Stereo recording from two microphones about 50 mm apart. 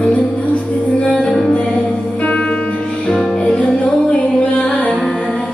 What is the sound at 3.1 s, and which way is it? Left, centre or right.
Music, centre.